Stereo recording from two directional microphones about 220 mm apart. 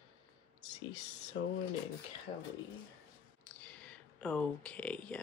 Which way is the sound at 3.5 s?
5° left (ahead or behind).